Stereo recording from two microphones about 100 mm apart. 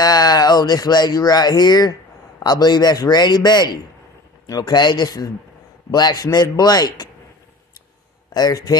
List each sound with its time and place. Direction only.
0.0 s a man's voice: 40° left (ahead or behind)
8.3 s speech: 40° left (ahead or behind)